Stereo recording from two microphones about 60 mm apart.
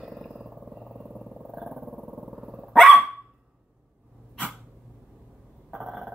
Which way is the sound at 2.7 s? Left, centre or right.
Centre.